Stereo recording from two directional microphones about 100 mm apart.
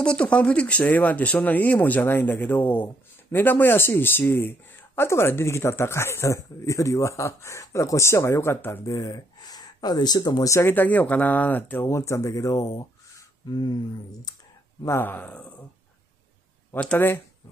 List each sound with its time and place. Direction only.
0.0 s speech: 10° left (ahead or behind)
8.8 s speech: 35° left (ahead or behind)
10.6 s speech: 20° left (ahead or behind)
11.9 s speech: 30° left (ahead or behind)
13.5 s a sound: 45° left (ahead or behind)
14.9 s speech: 20° left (ahead or behind)
16.7 s speech: 15° left (ahead or behind)